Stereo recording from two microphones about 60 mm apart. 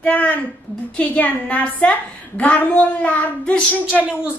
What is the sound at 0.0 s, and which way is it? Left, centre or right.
A woman's voice, left.